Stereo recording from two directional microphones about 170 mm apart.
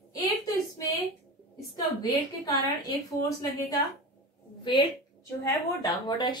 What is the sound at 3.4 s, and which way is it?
A woman's voice, 20° left (ahead or behind).